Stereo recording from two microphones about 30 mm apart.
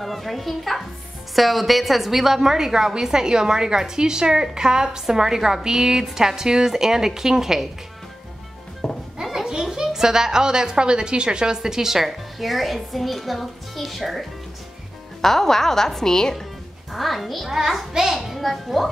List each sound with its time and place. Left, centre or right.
0.0 s a woman's voice: centre
8.8 s music: centre
9.2 s a sound: centre
9.9 s a woman's voice: centre
15.2 s a woman's voice: centre
16.9 s a woman's voice: centre
17.5 s a woman's voice: centre
18.1 s a woman's voice: centre